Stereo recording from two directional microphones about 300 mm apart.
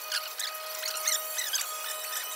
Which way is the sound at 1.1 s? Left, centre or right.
Centre.